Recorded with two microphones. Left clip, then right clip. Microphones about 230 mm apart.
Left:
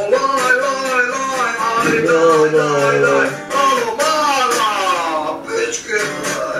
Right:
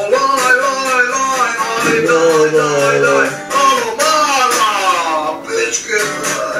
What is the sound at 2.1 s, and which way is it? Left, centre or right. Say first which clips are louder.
Music: even; centre.